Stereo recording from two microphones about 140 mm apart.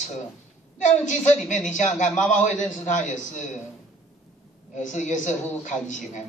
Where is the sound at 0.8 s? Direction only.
60° left (ahead or behind).